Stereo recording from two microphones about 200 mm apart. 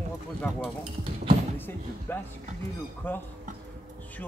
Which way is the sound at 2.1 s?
10° left (ahead or behind).